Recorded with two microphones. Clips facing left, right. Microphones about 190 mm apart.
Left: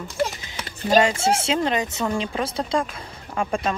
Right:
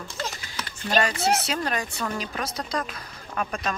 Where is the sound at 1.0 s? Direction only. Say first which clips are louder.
Left 4 dB; 25° left (ahead or behind).